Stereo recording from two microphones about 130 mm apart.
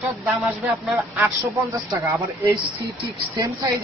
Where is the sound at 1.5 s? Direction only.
25° right (ahead or behind).